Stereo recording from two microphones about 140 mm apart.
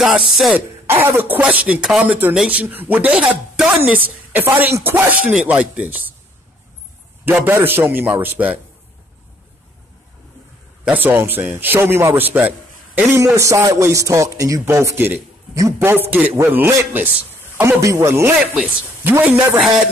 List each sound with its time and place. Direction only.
0.0 s a man's voice: 5° right (ahead or behind)
7.2 s a man's voice: 15° right (ahead or behind)
10.9 s a man's voice: 15° right (ahead or behind)